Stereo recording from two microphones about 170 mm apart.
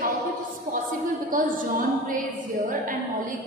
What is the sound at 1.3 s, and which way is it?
Speech, 55° right (ahead or behind).